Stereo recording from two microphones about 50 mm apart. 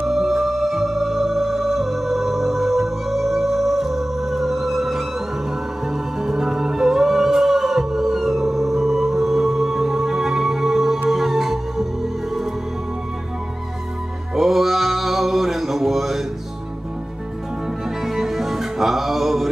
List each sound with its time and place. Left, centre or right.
0.0 s music: centre
6.1 s music: centre
14.3 s male singing: centre
18.0 s music: centre